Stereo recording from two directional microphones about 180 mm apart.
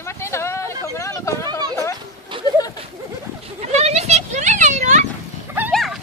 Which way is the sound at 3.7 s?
35° right (ahead or behind).